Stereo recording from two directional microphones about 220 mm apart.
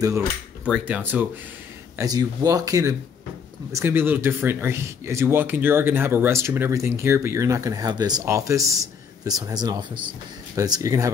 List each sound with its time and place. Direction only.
0.7 s a man's voice: 5° right (ahead or behind)